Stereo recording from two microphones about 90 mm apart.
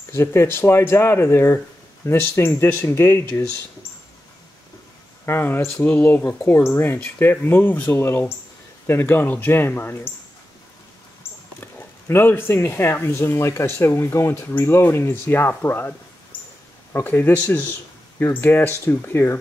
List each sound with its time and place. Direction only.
0.1 s speech: 30° left (ahead or behind)
5.2 s speech: 25° left (ahead or behind)
11.6 s speech: 25° left (ahead or behind)
16.9 s speech: 25° left (ahead or behind)